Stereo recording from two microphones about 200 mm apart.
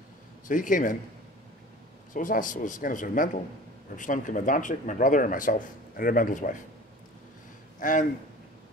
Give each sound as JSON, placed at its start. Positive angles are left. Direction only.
{"t": 0.5, "sound": "speech", "side_deg": 40}
{"t": 2.1, "sound": "speech", "side_deg": 40}
{"t": 7.8, "sound": "speech", "side_deg": 40}